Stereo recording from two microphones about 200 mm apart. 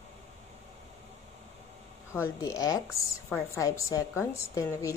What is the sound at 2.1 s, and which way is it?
A woman's voice, 15° left (ahead or behind).